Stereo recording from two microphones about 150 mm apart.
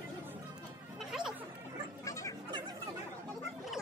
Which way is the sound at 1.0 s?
Centre (ahead or behind).